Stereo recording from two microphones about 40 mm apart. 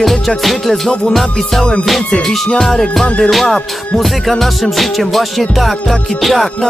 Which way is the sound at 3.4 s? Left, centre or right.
Centre.